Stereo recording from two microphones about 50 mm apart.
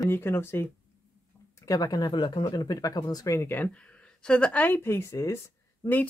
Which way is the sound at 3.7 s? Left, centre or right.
Left.